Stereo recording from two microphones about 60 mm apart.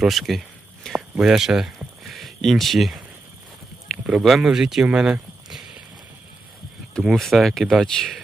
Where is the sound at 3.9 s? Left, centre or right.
Centre.